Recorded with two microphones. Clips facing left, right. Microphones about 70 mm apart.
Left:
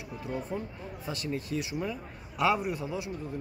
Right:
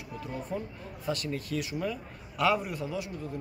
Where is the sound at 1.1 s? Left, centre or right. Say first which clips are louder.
Right 2 dB; left.